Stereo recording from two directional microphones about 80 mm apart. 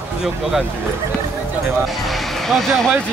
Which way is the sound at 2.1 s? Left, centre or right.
Centre.